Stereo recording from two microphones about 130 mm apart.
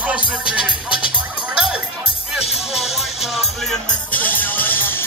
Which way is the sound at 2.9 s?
Centre (ahead or behind).